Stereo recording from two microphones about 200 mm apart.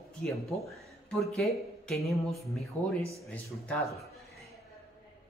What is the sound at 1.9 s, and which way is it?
Speech, centre (ahead or behind).